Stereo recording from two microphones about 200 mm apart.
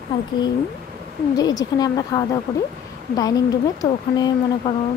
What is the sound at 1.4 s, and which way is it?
A woman's voice, 20° left (ahead or behind).